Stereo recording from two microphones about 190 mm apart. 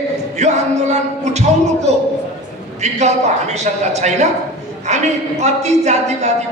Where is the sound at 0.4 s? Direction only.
35° right (ahead or behind).